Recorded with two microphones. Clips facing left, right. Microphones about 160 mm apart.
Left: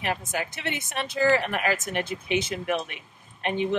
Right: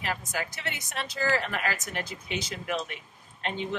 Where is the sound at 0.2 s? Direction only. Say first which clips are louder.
Left 3 dB; 55° left (ahead or behind).